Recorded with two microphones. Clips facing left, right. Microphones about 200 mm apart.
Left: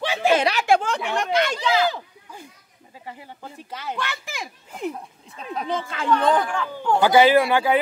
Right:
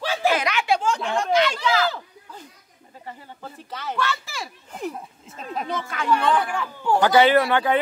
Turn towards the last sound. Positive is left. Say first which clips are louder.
# left 1 dB
turn(degrees=10)  # may be behind; listen again after turning